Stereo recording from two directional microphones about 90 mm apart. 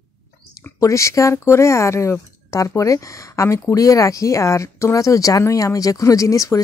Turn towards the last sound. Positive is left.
turn(degrees=35)  # may be behind; listen again after turning